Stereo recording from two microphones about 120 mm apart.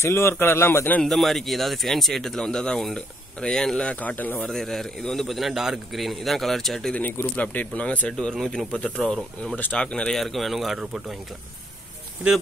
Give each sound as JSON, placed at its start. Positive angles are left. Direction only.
{"t": 0.0, "sound": "a man's voice", "side_deg": 20}
{"t": 1.0, "sound": "speech", "side_deg": 0}
{"t": 4.5, "sound": "speech", "side_deg": 5}
{"t": 7.0, "sound": "speech", "side_deg": 15}